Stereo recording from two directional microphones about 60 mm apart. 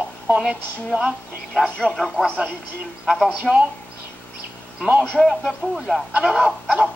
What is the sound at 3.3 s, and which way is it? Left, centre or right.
Speech, centre.